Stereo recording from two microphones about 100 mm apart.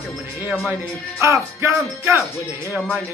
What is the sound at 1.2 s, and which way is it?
Speech, 25° right (ahead or behind).